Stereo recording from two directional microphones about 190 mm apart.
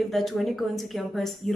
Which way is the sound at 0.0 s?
Centre (ahead or behind).